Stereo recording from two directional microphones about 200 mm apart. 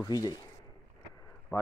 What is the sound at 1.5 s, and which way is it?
Speech, 15° left (ahead or behind).